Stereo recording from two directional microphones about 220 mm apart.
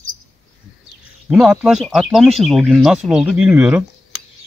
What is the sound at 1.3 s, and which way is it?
Speech, 5° right (ahead or behind).